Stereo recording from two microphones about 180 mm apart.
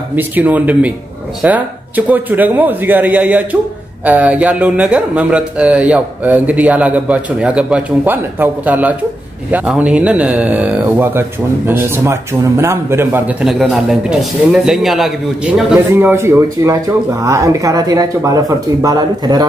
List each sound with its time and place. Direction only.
0.1 s speech: 10° right (ahead or behind)